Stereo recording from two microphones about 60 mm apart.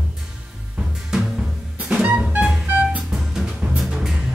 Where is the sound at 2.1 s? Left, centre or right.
Centre.